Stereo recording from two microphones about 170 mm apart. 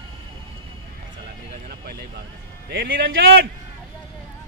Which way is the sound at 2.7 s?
65° right (ahead or behind).